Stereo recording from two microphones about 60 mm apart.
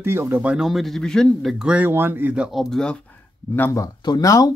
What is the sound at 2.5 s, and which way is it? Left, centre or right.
Speech, centre.